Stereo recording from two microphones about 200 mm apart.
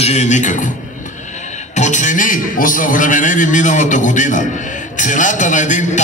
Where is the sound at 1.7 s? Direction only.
35° left (ahead or behind).